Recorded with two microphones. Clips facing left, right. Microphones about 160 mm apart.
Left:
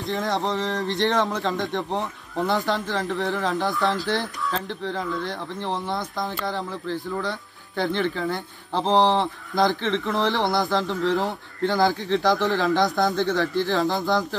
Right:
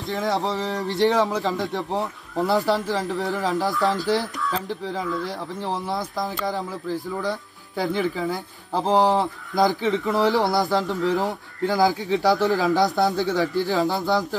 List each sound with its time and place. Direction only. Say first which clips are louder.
0.0 s speech: right 1 dB; centre (ahead or behind)